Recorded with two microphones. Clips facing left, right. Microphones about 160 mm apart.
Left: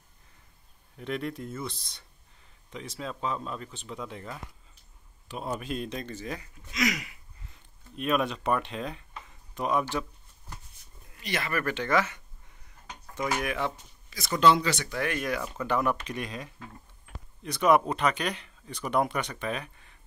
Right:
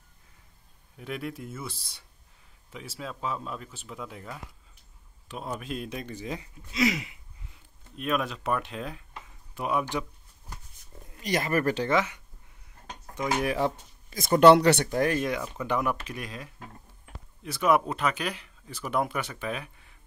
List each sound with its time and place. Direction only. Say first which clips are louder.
0.9 s speech: left 2 dB; 5° right (ahead or behind); by 7.2 s 25° right (ahead or behind)
7.9 s speech: left 2 dB; centre (ahead or behind)
11.2 s speech: right 5 dB; 40° right (ahead or behind)
11.9 s speech: left 3 dB; 15° right (ahead or behind)
13.4 s speech: right 4 dB; 35° right (ahead or behind); by 14.9 s 65° right (ahead or behind)
14.9 s speech: right 6 dB; 40° right (ahead or behind)
15.1 s speech: right 2 dB; 25° right (ahead or behind); by 20.0 s 5° right (ahead or behind)